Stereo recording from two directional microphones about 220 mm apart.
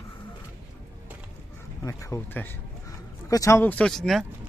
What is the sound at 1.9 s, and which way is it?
Speech, 15° left (ahead or behind).